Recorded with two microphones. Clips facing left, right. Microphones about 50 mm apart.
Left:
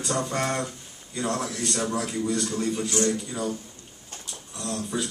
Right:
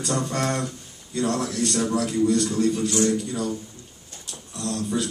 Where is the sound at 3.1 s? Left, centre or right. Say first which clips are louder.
Right 3 dB; centre.